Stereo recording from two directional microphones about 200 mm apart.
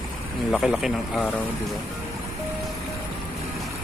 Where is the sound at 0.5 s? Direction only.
Centre (ahead or behind).